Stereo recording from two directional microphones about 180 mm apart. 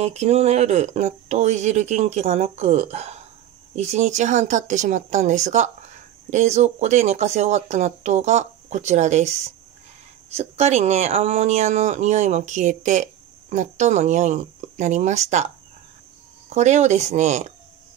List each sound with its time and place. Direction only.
0.0 s speech: 35° right (ahead or behind)
10.3 s speech: 35° right (ahead or behind)